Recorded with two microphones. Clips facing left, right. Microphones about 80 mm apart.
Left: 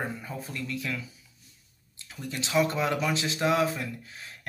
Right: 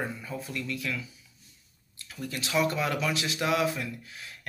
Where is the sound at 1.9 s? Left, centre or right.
Left.